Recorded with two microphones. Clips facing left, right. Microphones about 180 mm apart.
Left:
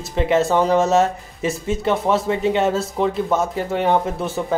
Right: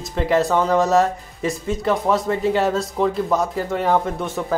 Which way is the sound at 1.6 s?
Centre (ahead or behind).